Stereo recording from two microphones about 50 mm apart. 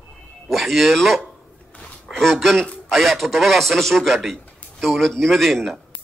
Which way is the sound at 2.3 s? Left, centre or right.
Centre.